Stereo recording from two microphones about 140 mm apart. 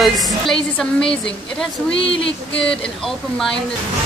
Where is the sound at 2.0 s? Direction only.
40° left (ahead or behind).